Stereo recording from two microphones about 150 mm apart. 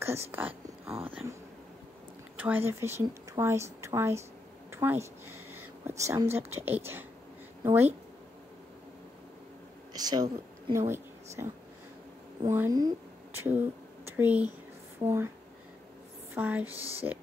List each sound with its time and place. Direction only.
0.3 s a sound: 10° right (ahead or behind)
1.0 s speech: 10° right (ahead or behind)
2.3 s speech: 10° right (ahead or behind)
4.6 s a sound: 15° right (ahead or behind)
5.5 s speech: 15° right (ahead or behind)
9.9 s a woman's voice: 25° right (ahead or behind)
12.5 s speech: 20° right (ahead or behind)
16.3 s speech: 10° right (ahead or behind)
16.7 s speech: 40° right (ahead or behind)